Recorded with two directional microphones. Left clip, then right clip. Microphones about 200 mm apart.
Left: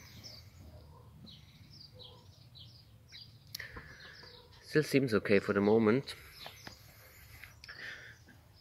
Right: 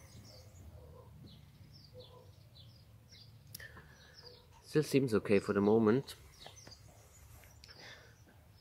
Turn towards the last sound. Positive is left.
turn(degrees=-10)  # may be behind; listen again after turning